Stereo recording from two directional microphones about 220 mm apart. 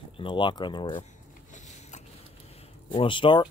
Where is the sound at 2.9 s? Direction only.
25° left (ahead or behind).